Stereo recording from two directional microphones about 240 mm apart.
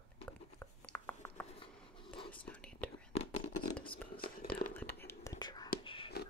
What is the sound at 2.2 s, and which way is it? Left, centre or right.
Whispering, left.